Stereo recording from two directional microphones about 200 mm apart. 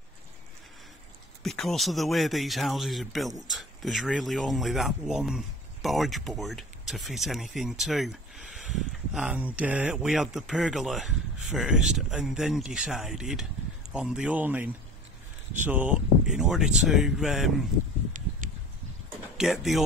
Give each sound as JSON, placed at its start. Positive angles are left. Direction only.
{"t": 1.4, "sound": "speech", "side_deg": 0}
{"t": 18.4, "sound": "a sound", "side_deg": -40}
{"t": 19.3, "sound": "speech", "side_deg": 0}